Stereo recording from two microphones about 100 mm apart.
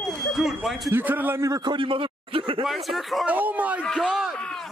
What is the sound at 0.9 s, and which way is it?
Speech, 20° right (ahead or behind).